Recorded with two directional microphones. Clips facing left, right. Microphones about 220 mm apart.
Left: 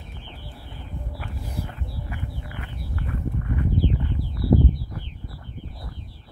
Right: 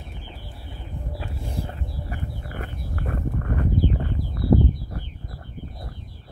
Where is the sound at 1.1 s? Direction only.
25° right (ahead or behind); by 5.9 s 45° right (ahead or behind).